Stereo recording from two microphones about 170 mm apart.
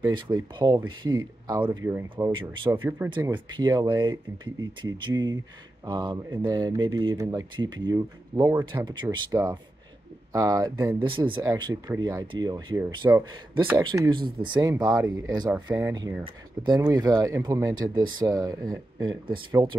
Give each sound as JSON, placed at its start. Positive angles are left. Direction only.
{"t": 0.0, "sound": "a man's voice", "side_deg": -25}
{"t": 3.2, "sound": "a man's voice", "side_deg": -25}
{"t": 11.0, "sound": "a man's voice", "side_deg": -30}